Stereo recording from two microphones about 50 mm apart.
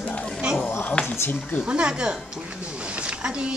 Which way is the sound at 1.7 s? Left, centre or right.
Centre.